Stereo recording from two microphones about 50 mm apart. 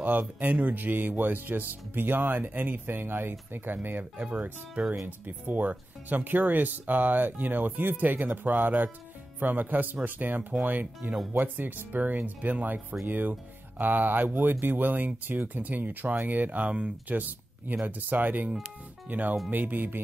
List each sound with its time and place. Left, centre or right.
0.4 s speech: right
4.3 s speech: right
17.8 s speech: right